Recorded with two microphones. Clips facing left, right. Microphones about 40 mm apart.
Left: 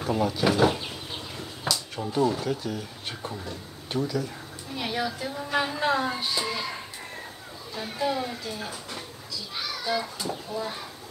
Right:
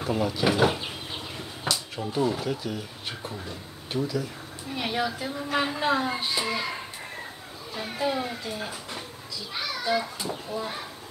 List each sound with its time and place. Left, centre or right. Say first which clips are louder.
0.0 s speech: left 1 dB; centre
2.0 s speech: left 2 dB; centre
4.7 s speech: right 1 dB; centre